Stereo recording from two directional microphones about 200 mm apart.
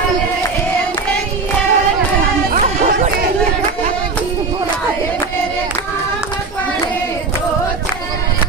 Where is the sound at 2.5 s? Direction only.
45° right (ahead or behind).